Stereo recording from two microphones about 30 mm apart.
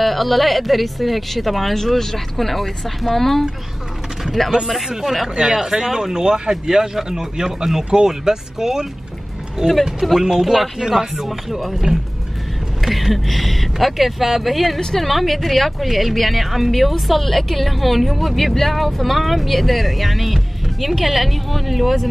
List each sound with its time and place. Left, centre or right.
0.0 s a woman's voice: centre
4.8 s speech: centre
7.4 s speech: centre
10.4 s a woman's voice: centre
11.9 s speech: right
12.8 s a woman's voice: centre